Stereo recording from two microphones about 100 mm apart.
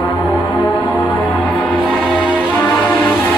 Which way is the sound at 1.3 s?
15° left (ahead or behind).